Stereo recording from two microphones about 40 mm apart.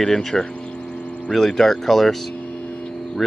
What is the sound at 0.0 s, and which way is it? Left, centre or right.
Speech, centre.